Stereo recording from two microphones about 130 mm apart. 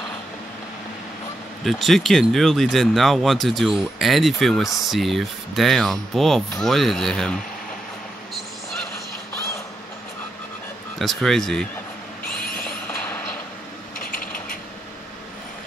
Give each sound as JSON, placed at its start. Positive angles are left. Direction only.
{"t": 1.6, "sound": "speech", "side_deg": 0}
{"t": 11.0, "sound": "speech", "side_deg": 0}
{"t": 13.9, "sound": "mechanisms", "side_deg": 90}